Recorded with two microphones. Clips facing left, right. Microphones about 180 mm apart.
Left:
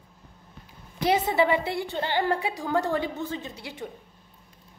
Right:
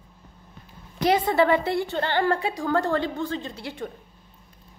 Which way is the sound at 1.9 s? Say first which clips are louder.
Even; 15° left (ahead or behind).